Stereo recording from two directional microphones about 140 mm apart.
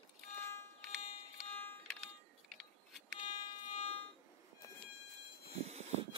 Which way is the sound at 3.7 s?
40° left (ahead or behind).